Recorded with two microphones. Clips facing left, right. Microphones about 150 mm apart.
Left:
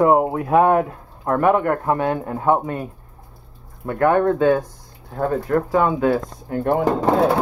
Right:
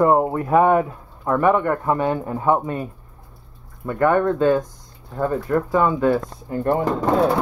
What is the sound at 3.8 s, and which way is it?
Speech, 10° left (ahead or behind).